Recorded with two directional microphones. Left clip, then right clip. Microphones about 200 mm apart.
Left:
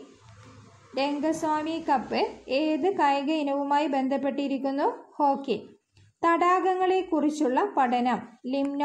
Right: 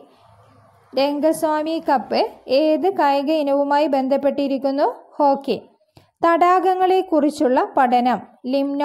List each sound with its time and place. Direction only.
0.9 s a woman's voice: 45° right (ahead or behind)